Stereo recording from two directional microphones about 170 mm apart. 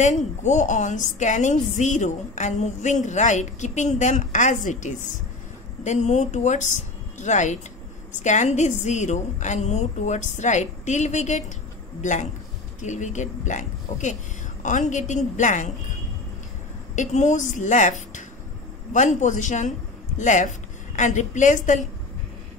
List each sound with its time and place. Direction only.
0.0 s a woman's voice: 45° left (ahead or behind)
16.9 s a woman's voice: 45° left (ahead or behind)